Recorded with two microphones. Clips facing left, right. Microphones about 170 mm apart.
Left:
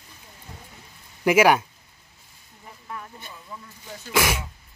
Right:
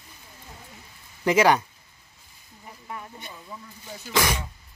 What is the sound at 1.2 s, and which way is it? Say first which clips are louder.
Speech: left 2 dB; 10° left (ahead or behind).